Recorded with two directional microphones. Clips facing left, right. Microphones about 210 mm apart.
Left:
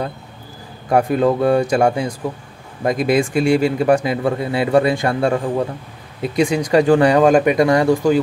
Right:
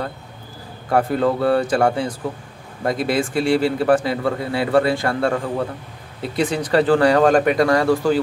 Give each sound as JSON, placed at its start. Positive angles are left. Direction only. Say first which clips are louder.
{"t": 0.8, "sound": "speech", "louder": "left 3 dB", "side_deg": 15}